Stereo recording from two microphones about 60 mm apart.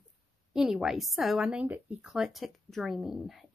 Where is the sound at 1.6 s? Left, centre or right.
Right.